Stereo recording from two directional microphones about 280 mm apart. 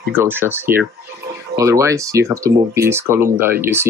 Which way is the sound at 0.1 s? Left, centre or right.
Centre.